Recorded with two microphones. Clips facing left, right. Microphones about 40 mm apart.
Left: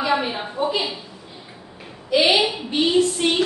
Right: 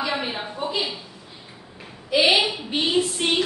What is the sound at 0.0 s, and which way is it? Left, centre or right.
Speech, centre.